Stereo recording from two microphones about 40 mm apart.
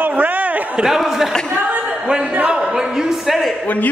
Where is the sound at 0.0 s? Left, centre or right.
Right.